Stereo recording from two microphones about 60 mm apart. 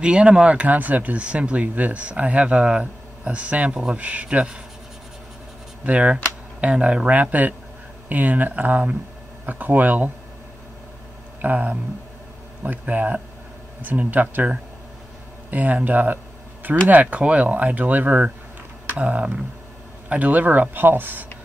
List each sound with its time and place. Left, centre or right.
0.0 s speech: centre
5.9 s speech: right
11.4 s speech: right